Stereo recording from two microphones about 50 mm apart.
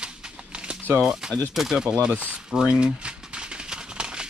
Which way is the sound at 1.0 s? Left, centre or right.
Centre.